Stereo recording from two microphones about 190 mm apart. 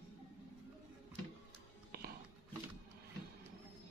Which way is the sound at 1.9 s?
55° right (ahead or behind).